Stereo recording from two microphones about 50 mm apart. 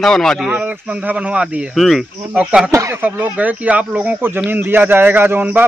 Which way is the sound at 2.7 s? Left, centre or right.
Right.